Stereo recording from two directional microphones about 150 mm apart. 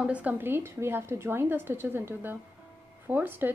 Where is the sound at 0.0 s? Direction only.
10° right (ahead or behind).